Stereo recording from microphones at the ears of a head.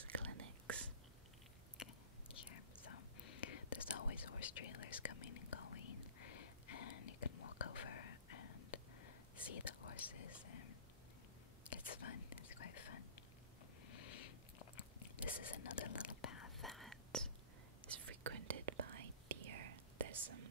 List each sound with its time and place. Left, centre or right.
0.0 s whispering: right
2.3 s whispering: left
13.8 s a sound: left
17.8 s whispering: right